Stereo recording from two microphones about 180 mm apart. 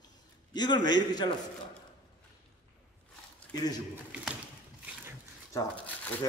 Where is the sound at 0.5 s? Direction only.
25° left (ahead or behind).